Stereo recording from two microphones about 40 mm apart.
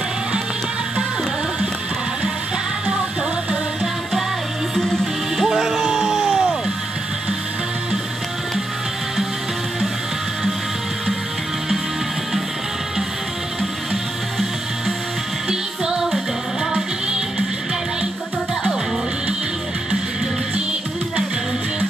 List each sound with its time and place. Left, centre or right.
5.4 s music: centre
15.4 s music: centre